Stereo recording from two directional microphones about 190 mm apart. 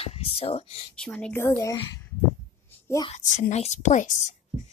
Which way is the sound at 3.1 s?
40° left (ahead or behind).